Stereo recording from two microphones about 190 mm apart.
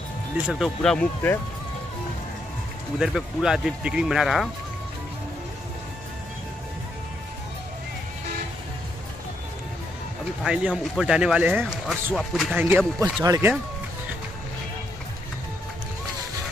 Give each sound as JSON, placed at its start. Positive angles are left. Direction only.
{"t": 0.5, "sound": "speech", "side_deg": 0}
{"t": 3.0, "sound": "speech", "side_deg": 0}
{"t": 10.4, "sound": "speech", "side_deg": -5}